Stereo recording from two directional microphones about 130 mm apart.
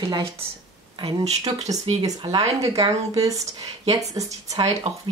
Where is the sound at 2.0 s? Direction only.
30° right (ahead or behind).